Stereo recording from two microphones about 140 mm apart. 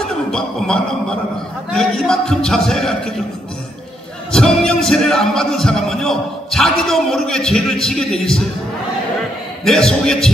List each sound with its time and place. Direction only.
0.0 s a sound: 5° left (ahead or behind)
1.8 s speech: 5° left (ahead or behind)
4.3 s speech: 5° left (ahead or behind)
9.7 s speech: 5° left (ahead or behind)